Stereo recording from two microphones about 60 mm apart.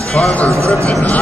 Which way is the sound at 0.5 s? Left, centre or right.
Right.